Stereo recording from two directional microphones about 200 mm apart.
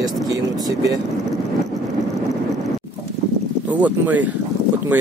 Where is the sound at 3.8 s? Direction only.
10° right (ahead or behind).